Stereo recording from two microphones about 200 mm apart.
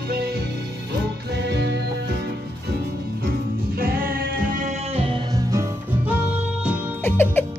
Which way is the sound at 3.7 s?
45° right (ahead or behind).